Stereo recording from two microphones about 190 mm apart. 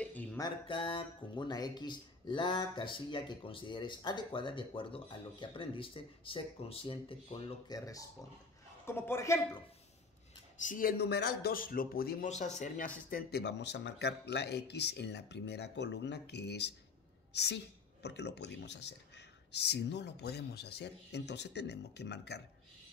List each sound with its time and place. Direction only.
0.0 s a sound: 10° left (ahead or behind)
0.4 s a man's voice: 25° left (ahead or behind)
10.6 s speech: 45° left (ahead or behind)
12.3 s a woman's voice: 40° left (ahead or behind); by 22.4 s 60° left (ahead or behind)